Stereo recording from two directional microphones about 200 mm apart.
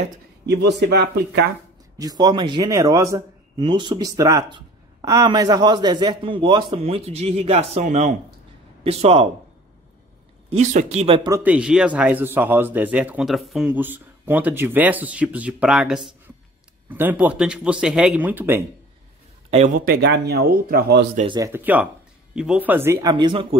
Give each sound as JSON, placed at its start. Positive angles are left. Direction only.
{"t": 0.5, "sound": "speech", "side_deg": -55}
{"t": 2.0, "sound": "a man's voice", "side_deg": -20}
{"t": 10.5, "sound": "speech", "side_deg": -35}
{"t": 11.4, "sound": "speech", "side_deg": -5}
{"t": 19.5, "sound": "speech", "side_deg": -40}
{"t": 21.4, "sound": "speech", "side_deg": -10}